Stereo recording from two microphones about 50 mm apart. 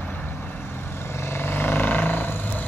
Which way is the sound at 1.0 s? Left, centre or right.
Left.